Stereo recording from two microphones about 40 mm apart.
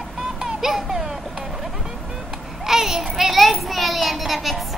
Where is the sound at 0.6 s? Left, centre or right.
Centre.